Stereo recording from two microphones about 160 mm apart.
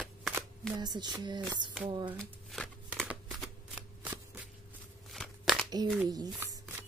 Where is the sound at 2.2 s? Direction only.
5° left (ahead or behind).